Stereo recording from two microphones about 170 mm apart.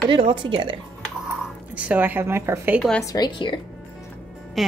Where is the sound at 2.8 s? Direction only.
Centre (ahead or behind).